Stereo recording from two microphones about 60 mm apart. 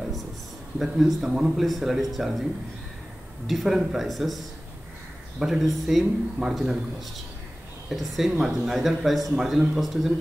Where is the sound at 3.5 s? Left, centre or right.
Centre.